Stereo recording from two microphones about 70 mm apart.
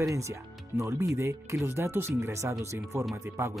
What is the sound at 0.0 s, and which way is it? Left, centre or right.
Speech, right.